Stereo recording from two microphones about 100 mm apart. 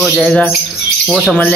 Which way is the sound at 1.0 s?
5° right (ahead or behind).